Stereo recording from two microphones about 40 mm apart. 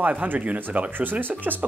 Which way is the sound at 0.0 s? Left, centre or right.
Right.